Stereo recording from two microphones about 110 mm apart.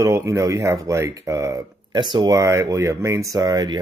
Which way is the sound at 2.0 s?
40° right (ahead or behind).